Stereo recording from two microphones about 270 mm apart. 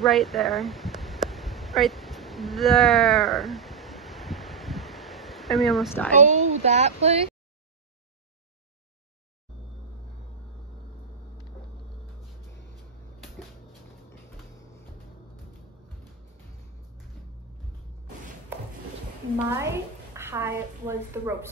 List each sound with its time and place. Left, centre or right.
0.0 s a sound: centre
6.1 s speech: right
19.5 s a woman's voice: centre